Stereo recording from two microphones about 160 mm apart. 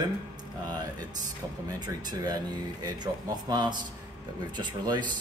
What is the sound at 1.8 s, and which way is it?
Speech, 25° right (ahead or behind).